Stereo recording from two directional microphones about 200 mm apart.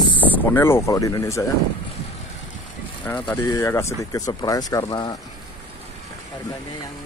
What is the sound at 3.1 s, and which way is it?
Speech, 15° left (ahead or behind).